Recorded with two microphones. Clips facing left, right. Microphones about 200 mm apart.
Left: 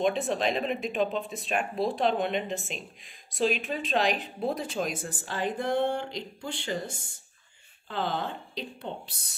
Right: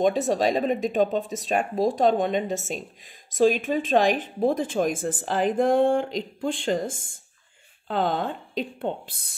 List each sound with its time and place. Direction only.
0.1 s speech: 40° right (ahead or behind)